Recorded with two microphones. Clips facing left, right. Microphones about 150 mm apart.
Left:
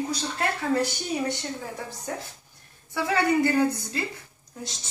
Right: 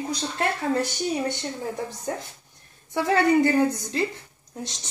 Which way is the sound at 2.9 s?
20° right (ahead or behind).